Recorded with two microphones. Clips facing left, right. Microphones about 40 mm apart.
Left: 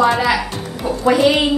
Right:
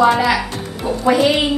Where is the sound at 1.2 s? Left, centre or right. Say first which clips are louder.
Left 1 dB; centre.